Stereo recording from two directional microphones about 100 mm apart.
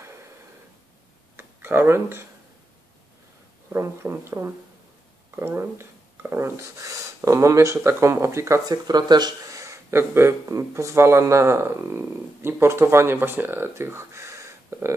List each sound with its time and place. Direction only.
1.3 s tick-tock: 20° right (ahead or behind)
3.7 s speech: 25° right (ahead or behind)
8.6 s speech: 45° right (ahead or behind); by 14.9 s 30° right (ahead or behind)